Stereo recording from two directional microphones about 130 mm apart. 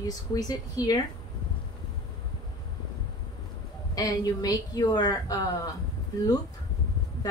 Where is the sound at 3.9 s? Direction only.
30° left (ahead or behind).